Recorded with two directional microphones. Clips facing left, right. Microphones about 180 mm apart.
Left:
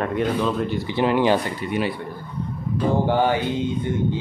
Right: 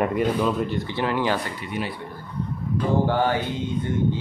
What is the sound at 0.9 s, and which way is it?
Speech, 20° left (ahead or behind).